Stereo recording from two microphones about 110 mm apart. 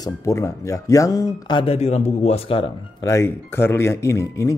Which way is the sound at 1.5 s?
65° left (ahead or behind).